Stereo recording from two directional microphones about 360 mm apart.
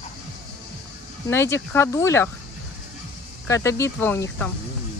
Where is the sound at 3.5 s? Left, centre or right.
Centre.